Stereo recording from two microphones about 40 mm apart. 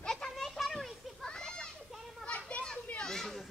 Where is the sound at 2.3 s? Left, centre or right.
Left.